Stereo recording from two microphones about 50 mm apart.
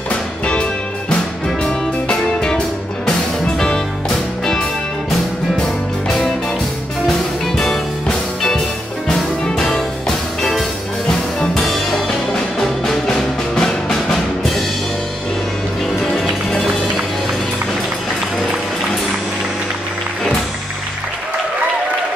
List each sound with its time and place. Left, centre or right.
0.1 s music: left
5.6 s music: centre
16.2 s music: centre